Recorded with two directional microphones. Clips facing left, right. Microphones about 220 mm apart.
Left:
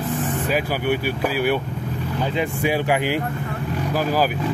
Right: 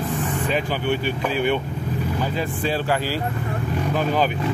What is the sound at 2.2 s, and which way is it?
Speech, 15° left (ahead or behind).